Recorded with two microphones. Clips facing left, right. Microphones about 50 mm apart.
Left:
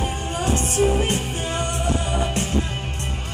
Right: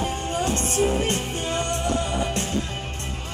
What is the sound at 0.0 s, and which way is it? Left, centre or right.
Music, centre.